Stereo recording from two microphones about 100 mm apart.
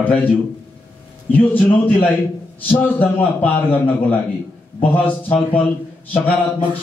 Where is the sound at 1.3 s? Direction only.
15° left (ahead or behind).